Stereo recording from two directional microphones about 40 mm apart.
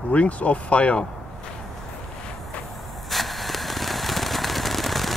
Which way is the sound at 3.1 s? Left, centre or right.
Centre.